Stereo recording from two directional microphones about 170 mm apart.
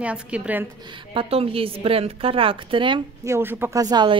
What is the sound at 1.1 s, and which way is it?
A woman's voice, 30° right (ahead or behind).